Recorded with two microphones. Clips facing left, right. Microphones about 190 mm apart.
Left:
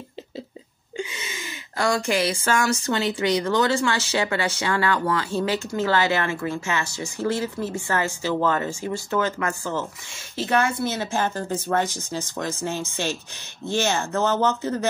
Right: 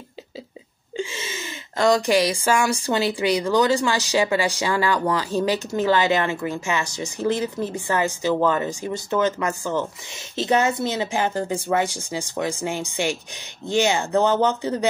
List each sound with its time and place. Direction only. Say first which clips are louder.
0.9 s speech: right 3 dB; 25° right (ahead or behind)